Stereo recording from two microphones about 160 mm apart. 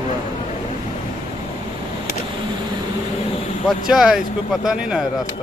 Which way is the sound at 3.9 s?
5° right (ahead or behind).